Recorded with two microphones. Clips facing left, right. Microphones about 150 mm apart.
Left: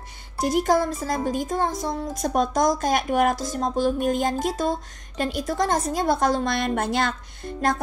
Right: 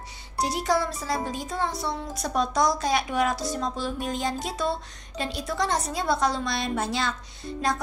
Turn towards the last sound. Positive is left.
turn(degrees=50)  # may be behind; listen again after turning